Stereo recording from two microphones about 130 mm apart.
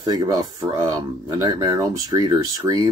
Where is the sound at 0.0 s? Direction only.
30° right (ahead or behind).